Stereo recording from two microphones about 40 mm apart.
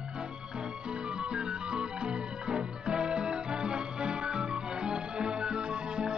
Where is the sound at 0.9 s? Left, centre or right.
Right.